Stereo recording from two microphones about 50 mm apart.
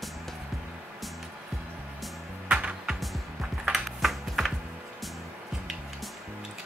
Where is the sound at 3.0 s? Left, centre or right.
Centre.